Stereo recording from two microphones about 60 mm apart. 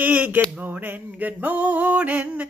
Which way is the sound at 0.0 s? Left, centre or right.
Right.